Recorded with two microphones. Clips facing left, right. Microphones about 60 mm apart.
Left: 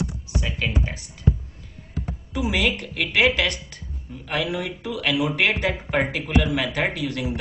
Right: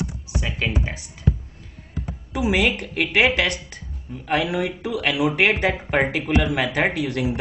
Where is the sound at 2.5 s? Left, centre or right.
Right.